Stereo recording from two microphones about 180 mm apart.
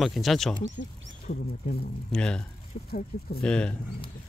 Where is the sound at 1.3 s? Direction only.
60° left (ahead or behind).